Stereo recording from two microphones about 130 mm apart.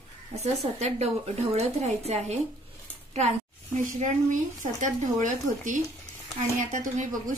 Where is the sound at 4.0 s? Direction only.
80° right.